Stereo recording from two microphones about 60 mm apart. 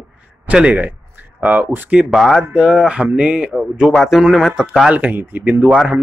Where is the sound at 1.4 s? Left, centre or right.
Right.